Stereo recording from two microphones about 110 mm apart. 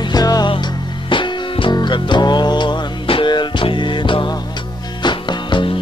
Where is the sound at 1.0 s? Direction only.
50° left (ahead or behind).